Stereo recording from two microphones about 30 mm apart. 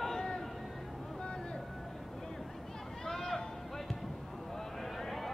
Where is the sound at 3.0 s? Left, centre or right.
Centre.